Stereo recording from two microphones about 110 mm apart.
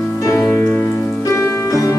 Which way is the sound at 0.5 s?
20° left (ahead or behind).